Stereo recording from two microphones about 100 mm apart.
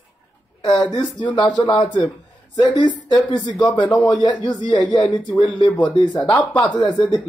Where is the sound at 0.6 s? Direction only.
50° left (ahead or behind).